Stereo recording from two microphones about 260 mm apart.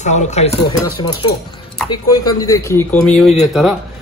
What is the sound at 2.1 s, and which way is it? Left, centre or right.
Speech, centre.